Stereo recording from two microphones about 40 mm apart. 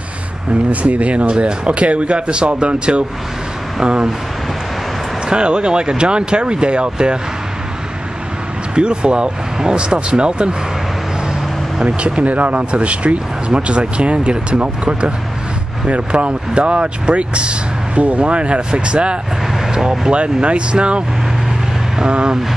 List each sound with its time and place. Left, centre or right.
0.7 s speech: right
5.3 s speech: right
8.7 s speech: right
11.8 s speech: right
19.7 s vehicle: centre
20.1 s speech: right